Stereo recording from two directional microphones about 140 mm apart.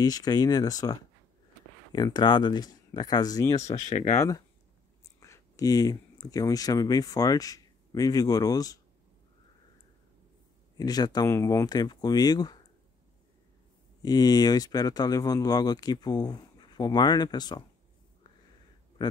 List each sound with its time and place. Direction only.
0.0 s speech: 30° left (ahead or behind)
3.6 s speech: 55° left (ahead or behind)
5.0 s speech: 25° left (ahead or behind)
10.8 s speech: 30° left (ahead or behind)
14.0 s speech: 30° left (ahead or behind)
19.0 s a sound: 30° left (ahead or behind)